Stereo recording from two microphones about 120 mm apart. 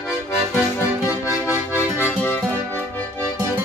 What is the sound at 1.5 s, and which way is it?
Accordion, 20° left (ahead or behind).